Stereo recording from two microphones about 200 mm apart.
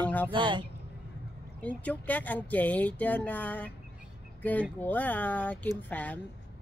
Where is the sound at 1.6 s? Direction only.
5° left (ahead or behind).